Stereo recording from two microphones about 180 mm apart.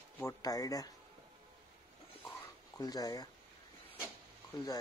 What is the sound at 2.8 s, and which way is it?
Speech, 20° left (ahead or behind).